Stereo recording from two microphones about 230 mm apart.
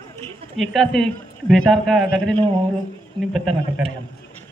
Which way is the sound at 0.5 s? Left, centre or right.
Centre.